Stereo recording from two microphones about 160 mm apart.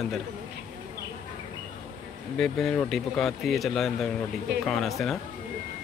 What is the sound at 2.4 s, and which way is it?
Speech, 5° left (ahead or behind).